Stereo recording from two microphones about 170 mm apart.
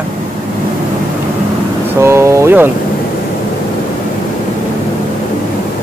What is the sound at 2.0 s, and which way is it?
Speech, 15° right (ahead or behind).